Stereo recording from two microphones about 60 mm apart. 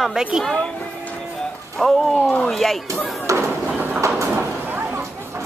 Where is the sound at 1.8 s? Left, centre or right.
Centre.